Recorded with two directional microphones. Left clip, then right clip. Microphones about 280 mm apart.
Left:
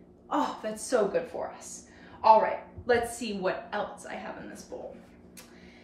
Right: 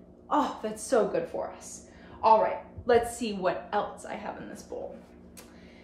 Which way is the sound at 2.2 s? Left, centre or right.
Centre.